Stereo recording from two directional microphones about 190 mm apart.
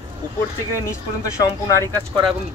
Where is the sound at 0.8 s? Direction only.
15° left (ahead or behind).